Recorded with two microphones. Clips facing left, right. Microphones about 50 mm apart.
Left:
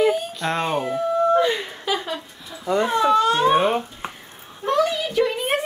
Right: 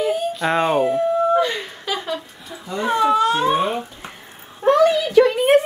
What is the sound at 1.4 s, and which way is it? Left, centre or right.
Speech, centre.